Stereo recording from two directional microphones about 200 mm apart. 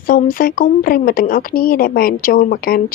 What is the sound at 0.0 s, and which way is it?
A woman's voice, 45° left (ahead or behind).